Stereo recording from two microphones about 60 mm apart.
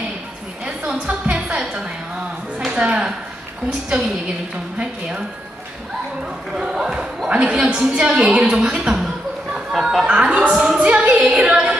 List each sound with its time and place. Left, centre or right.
0.7 s music: centre
1.3 s a sound: centre
2.6 s speech: centre
6.5 s a woman's voice: centre
9.5 s a sound: centre
10.0 s a woman's voice: centre